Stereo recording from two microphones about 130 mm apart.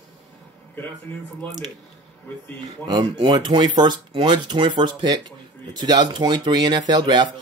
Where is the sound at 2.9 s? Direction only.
35° right (ahead or behind).